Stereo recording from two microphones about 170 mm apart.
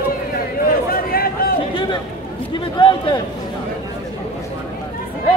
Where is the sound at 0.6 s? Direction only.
60° left (ahead or behind).